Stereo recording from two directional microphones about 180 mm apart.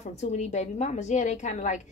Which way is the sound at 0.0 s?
40° left (ahead or behind).